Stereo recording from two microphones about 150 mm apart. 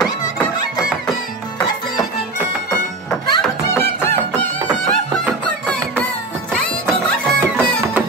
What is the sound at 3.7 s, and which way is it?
Music, 15° left (ahead or behind).